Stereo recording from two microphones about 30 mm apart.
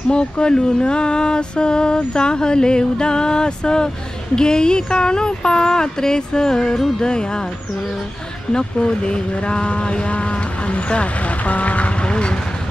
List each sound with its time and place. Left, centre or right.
0.1 s speech: left
0.7 s a sound: left
8.5 s speech: left
12.0 s vehicle: left